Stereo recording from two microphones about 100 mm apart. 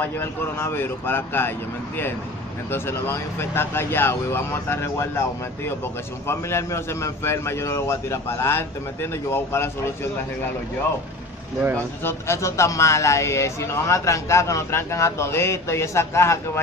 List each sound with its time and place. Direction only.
0.0 s speech: 20° left (ahead or behind)
2.7 s speech: 25° left (ahead or behind)
6.2 s speech: 25° left (ahead or behind)
12.0 s speech: 25° left (ahead or behind)